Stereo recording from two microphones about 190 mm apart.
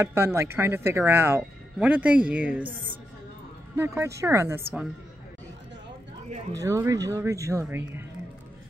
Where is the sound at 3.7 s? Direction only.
15° right (ahead or behind).